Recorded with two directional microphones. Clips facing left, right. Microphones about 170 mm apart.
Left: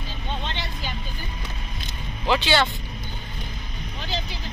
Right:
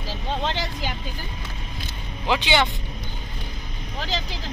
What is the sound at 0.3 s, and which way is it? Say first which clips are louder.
Vehicle: right 6 dB; 90° right.